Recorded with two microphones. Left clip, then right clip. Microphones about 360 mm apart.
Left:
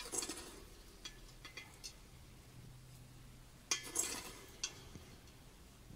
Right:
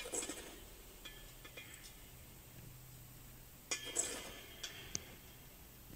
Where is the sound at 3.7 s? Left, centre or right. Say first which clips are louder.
Left 1 dB; centre.